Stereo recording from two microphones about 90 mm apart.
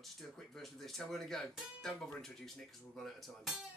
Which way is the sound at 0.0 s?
5° left (ahead or behind).